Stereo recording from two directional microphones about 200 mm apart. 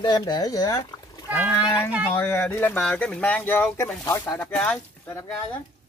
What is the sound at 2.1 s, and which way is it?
Speech, 10° left (ahead or behind).